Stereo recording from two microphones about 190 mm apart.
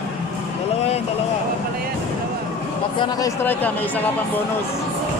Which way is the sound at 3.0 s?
20° left (ahead or behind).